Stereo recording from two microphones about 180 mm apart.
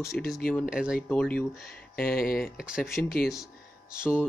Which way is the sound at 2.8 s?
55° left (ahead or behind).